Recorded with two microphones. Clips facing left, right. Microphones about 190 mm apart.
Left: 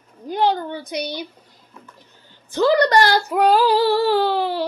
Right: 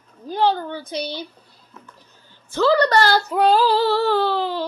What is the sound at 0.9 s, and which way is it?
Female singing, 15° left (ahead or behind).